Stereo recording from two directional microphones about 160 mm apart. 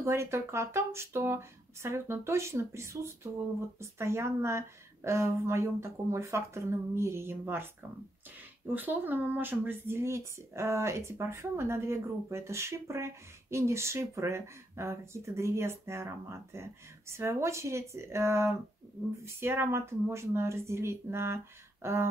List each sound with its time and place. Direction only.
0.0 s speech: 15° right (ahead or behind)
8.7 s speech: 10° right (ahead or behind)